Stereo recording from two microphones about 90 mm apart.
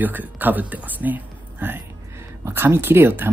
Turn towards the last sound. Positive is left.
turn(degrees=-25)  # may be behind; listen again after turning